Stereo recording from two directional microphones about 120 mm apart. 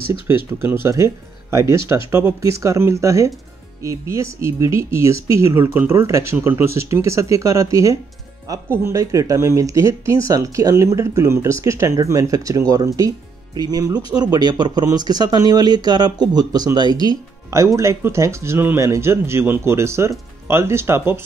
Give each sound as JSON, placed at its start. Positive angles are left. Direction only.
{"t": 0.3, "sound": "speech", "side_deg": -20}